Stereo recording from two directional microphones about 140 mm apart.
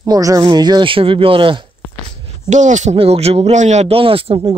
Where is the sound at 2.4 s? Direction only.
60° right (ahead or behind); by 4.6 s 40° right (ahead or behind).